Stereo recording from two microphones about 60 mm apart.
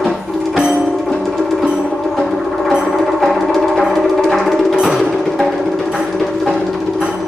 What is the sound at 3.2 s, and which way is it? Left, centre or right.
Music, centre.